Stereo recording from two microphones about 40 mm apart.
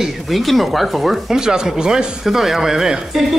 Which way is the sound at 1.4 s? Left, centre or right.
Centre.